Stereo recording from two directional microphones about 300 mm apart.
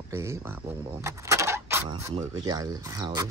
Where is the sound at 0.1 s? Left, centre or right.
Centre.